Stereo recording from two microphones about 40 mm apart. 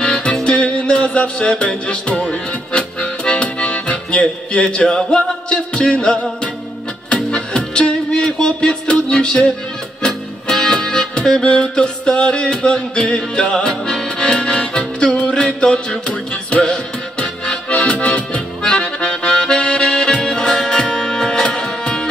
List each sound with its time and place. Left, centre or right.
0.0 s music: left
16.4 s accordion: left